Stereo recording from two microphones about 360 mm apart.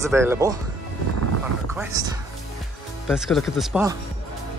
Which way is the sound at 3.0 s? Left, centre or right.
Centre.